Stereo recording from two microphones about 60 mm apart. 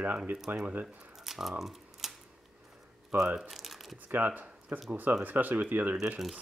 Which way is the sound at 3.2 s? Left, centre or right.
Centre.